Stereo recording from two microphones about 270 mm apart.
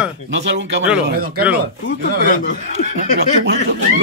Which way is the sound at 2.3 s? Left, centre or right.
Left.